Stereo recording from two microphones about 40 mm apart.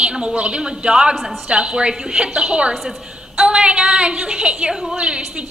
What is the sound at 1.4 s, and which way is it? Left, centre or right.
A woman's voice, right.